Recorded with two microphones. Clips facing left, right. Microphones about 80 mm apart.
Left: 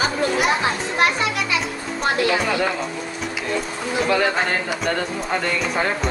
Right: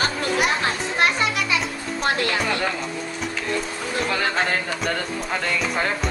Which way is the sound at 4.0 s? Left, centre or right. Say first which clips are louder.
Left 4 dB; centre.